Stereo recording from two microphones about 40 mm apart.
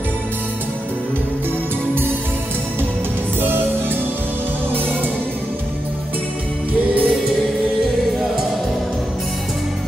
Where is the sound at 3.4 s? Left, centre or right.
Right.